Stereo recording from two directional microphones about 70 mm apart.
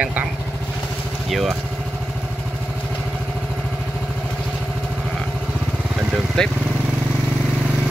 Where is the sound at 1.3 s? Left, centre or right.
Centre.